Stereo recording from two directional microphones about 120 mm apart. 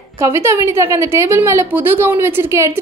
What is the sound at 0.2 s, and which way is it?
A woman's voice, 20° right (ahead or behind).